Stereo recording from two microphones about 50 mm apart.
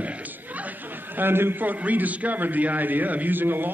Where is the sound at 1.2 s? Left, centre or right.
Right.